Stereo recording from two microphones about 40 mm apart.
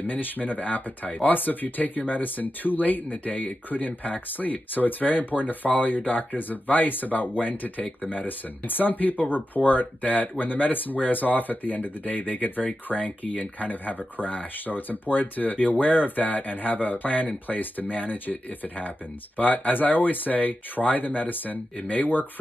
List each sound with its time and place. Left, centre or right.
0.0 s speech: left
10.4 s speech: left